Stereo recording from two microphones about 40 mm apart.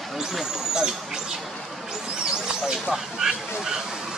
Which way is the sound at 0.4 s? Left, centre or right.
Centre.